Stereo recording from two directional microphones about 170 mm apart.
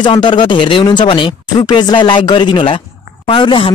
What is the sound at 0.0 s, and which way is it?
Speech, 25° left (ahead or behind).